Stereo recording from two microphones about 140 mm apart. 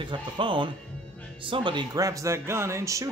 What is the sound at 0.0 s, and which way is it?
Speech, 35° right (ahead or behind).